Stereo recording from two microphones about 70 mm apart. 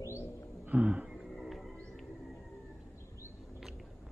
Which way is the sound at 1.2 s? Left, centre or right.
Centre.